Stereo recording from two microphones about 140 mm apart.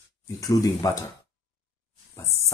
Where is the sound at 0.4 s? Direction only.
25° left (ahead or behind).